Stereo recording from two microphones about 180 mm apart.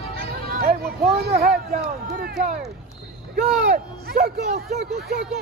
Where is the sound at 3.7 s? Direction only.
60° right (ahead or behind).